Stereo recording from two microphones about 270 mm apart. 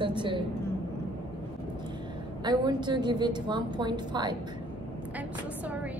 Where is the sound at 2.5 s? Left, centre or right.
Centre.